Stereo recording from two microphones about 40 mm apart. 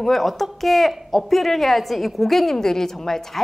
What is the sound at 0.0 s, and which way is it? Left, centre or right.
A woman's voice, centre.